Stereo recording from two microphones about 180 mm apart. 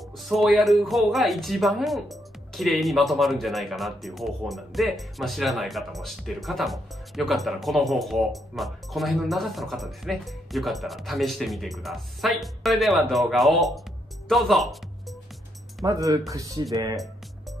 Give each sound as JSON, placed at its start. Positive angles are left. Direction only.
{"t": 0.2, "sound": "speech", "side_deg": 0}
{"t": 15.8, "sound": "speech", "side_deg": -20}